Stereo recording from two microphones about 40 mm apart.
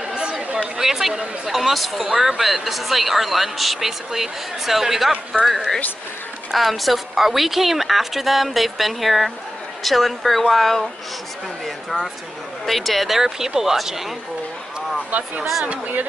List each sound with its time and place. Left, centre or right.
0.0 s chatter: right
0.7 s speech: centre
15.0 s speech: right